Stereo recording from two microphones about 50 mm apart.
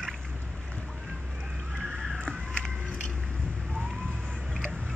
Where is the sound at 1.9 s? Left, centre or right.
Centre.